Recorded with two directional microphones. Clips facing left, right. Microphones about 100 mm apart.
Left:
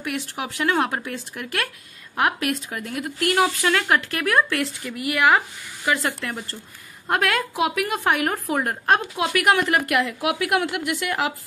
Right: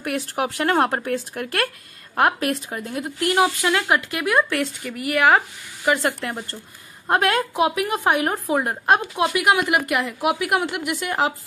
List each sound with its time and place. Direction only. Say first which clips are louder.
0.0 s speech: right 4 dB; 45° right (ahead or behind); by 4.6 s 15° right (ahead or behind)
4.6 s speech: right 1 dB; 30° right (ahead or behind)